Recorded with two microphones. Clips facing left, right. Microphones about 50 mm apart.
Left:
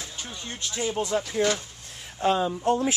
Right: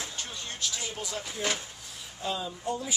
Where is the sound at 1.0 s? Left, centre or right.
Left.